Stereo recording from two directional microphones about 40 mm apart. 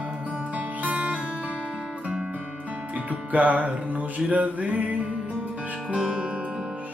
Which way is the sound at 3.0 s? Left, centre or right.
Right.